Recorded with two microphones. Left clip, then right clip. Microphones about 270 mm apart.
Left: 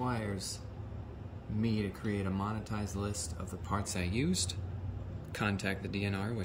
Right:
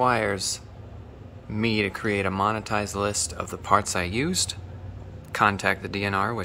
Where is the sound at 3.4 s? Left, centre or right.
Right.